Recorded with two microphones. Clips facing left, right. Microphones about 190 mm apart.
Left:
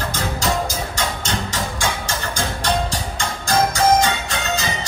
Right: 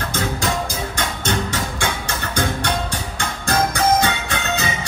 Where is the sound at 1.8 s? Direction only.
60° right (ahead or behind).